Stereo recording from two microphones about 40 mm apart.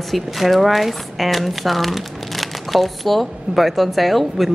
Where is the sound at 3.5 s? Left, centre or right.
Centre.